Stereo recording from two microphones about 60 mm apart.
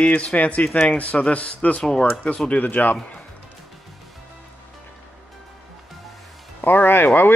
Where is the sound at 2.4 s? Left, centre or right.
Left.